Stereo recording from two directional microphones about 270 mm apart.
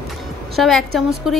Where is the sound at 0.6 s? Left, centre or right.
Centre.